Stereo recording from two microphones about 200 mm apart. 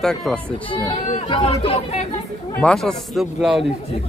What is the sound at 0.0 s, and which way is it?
Speech, centre (ahead or behind).